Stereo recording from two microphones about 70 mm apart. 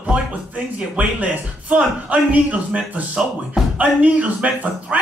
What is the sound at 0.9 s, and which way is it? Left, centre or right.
Speech, right.